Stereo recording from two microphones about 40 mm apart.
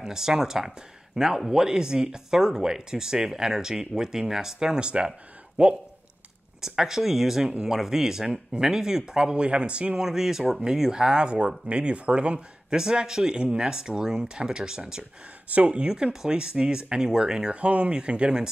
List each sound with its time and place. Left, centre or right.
0.0 s speech: centre; by 5.7 s right
6.7 s speech: centre
9.9 s speech: centre
12.8 s speech: centre
15.5 s speech: right
15.9 s speech: centre
17.6 s speech: right